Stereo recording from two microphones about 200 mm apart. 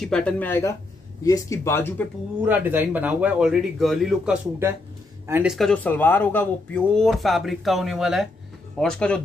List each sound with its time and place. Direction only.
0.0 s speech: 5° left (ahead or behind)
2.4 s speech: 10° right (ahead or behind)